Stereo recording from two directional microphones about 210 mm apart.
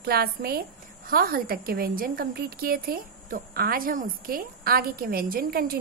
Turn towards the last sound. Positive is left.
turn(degrees=-45)  # may be behind; listen again after turning